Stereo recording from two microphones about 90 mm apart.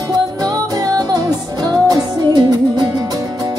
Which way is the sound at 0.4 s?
40° right (ahead or behind).